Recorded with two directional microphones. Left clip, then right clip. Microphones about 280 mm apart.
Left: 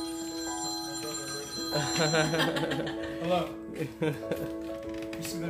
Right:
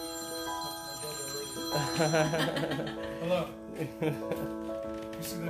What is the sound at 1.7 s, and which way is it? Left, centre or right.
Speech, centre.